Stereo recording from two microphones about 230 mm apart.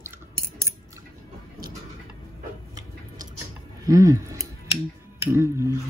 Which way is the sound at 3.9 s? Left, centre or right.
Centre.